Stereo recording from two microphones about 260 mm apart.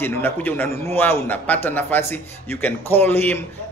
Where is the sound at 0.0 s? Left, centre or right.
Centre.